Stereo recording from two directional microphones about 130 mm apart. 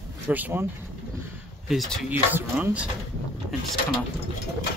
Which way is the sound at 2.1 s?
15° right (ahead or behind).